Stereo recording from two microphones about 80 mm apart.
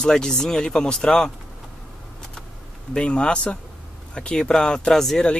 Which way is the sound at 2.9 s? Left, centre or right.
Centre.